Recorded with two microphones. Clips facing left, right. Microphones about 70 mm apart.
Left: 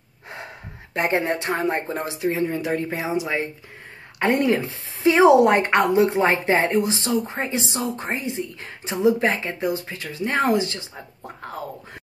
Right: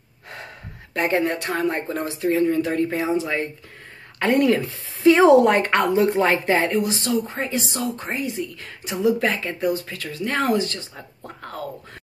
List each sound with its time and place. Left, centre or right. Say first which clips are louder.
0.9 s speech: right 1 dB; left